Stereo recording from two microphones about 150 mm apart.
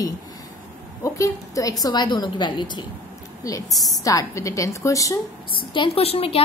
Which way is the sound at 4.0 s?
20° left (ahead or behind).